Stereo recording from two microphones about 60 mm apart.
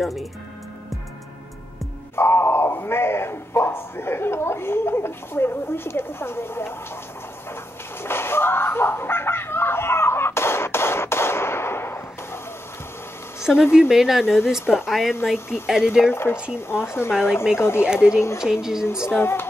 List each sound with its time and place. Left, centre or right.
0.0 s speech: centre
2.1 s speech: left
8.0 s slap: left
13.4 s a sound: centre
13.7 s speech: centre
16.1 s speech: left
17.6 s speech: left
17.8 s speech: centre
19.0 s speech: left